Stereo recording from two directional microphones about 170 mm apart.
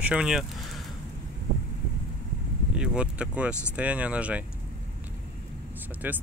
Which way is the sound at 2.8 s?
5° right (ahead or behind).